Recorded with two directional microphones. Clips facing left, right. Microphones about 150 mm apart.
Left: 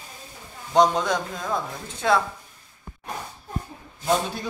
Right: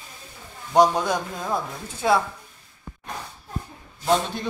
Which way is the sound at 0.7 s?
10° right (ahead or behind).